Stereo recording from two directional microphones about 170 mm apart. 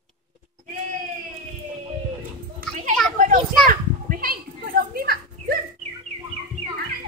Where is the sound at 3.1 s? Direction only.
50° right (ahead or behind).